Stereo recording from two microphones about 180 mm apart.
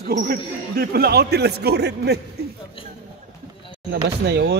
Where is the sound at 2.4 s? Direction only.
65° right (ahead or behind).